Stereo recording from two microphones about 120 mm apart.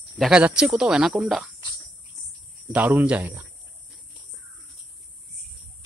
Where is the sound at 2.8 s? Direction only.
20° right (ahead or behind).